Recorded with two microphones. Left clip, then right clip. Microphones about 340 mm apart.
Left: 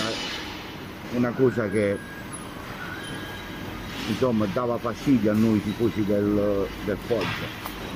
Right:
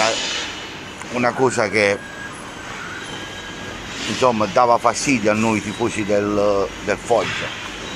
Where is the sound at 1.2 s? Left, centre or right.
Right.